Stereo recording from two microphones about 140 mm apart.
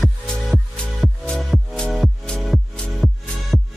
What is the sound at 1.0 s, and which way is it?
Music, centre (ahead or behind).